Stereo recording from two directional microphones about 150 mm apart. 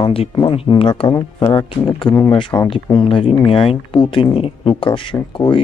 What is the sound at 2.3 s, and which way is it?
Speech, 30° left (ahead or behind).